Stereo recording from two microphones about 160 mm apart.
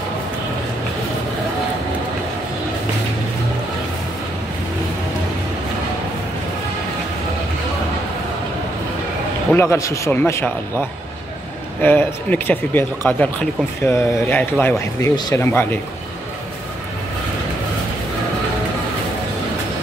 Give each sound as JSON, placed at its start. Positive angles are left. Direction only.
{"t": 9.5, "sound": "speech", "side_deg": 15}